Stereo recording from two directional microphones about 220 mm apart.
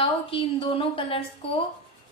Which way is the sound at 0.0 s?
25° left (ahead or behind).